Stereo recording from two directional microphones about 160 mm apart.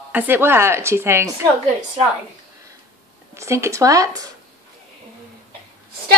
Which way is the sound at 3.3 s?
15° right (ahead or behind).